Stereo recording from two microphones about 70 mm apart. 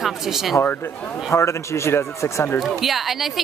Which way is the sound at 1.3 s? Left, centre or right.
Left.